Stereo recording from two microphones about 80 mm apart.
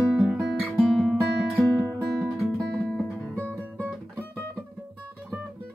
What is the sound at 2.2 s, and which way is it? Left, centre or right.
Music, centre.